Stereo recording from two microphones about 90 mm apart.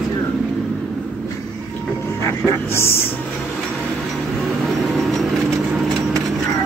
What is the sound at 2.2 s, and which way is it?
Speech, 30° left (ahead or behind).